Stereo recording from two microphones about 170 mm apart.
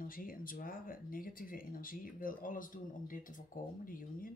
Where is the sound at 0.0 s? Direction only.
55° left (ahead or behind).